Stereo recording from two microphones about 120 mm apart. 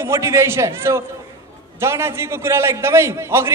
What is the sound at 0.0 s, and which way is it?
A man's voice, 25° right (ahead or behind).